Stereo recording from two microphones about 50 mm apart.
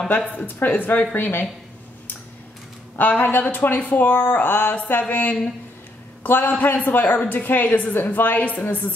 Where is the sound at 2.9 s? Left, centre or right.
Left.